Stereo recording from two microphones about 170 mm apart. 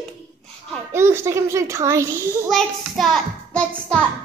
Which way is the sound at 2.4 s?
Centre (ahead or behind).